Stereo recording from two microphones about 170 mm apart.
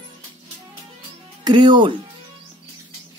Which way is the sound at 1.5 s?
25° right (ahead or behind).